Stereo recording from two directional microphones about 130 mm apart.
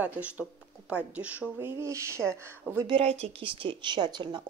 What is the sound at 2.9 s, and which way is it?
Speech, 50° right (ahead or behind).